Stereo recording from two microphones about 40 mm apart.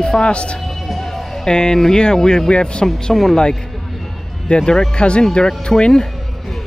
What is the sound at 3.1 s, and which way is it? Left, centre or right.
Speech, centre.